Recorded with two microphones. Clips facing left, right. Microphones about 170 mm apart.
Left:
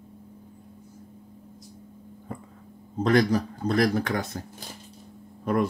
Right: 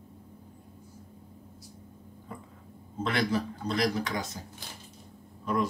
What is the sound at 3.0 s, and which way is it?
A man's voice, 45° left (ahead or behind).